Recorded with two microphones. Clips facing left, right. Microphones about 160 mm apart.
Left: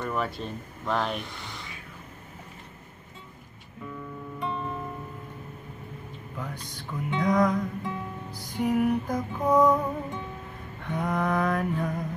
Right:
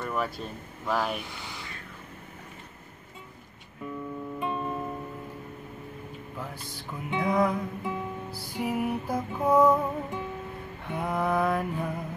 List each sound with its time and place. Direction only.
0.0 s speech: 5° right (ahead or behind)
4.4 s music: 15° right (ahead or behind)
6.3 s music: 5° right (ahead or behind)
10.9 s mantra: 5° right (ahead or behind)